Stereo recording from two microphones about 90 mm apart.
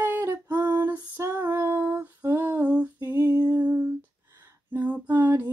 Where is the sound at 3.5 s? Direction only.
15° right (ahead or behind).